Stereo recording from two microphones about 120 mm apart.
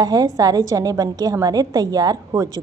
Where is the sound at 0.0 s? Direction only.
30° right (ahead or behind).